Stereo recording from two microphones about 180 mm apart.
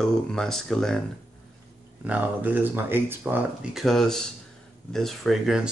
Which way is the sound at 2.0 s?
10° right (ahead or behind).